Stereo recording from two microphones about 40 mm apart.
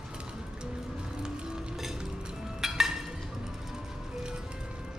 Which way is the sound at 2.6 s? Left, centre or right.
Centre.